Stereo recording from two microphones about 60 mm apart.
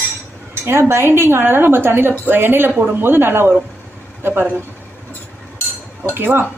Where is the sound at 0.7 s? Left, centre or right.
Right.